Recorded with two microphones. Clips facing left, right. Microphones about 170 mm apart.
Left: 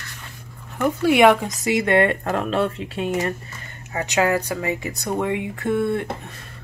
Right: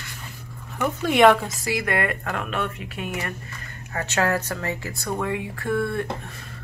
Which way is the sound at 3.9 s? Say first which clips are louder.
Left 3 dB; 15° left (ahead or behind).